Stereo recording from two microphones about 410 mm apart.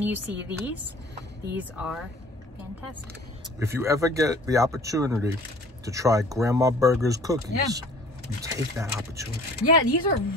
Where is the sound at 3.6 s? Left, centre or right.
Centre.